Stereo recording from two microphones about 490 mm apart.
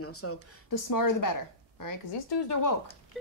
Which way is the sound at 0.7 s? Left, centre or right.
Left.